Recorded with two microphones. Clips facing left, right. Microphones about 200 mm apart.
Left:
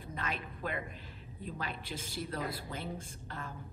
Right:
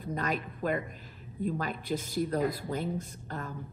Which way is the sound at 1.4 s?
45° right (ahead or behind).